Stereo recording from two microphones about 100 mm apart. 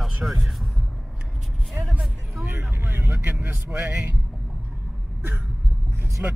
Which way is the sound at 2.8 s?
20° right (ahead or behind).